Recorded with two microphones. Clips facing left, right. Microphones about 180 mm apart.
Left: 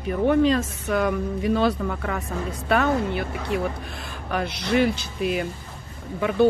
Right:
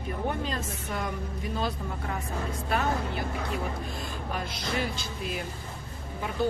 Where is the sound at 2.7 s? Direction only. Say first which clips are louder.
Left 8 dB; 70° left (ahead or behind).